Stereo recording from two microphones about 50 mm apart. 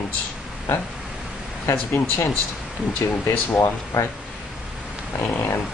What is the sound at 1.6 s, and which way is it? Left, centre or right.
Speech, left.